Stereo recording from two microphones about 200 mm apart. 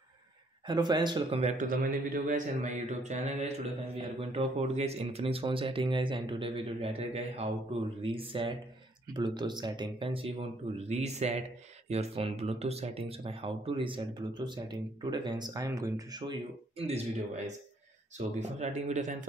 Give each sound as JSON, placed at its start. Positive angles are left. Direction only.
{"t": 0.7, "sound": "speech", "side_deg": -20}
{"t": 1.4, "sound": "a man's voice", "side_deg": -45}
{"t": 18.1, "sound": "a man's voice", "side_deg": -35}